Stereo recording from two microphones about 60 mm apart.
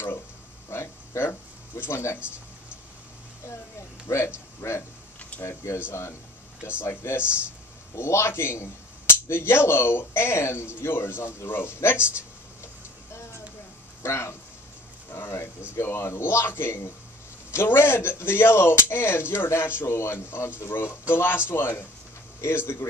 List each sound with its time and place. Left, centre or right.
0.7 s a sound: left
1.8 s speech: left
4.6 s speech: left
14.0 s speech: left